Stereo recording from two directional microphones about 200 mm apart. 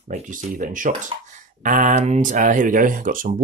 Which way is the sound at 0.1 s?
40° right (ahead or behind).